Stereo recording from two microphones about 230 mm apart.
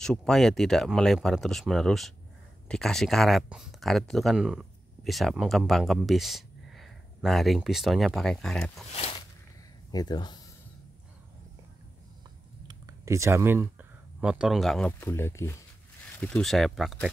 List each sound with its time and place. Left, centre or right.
0.0 s speech: centre
9.8 s speech: centre
12.6 s speech: centre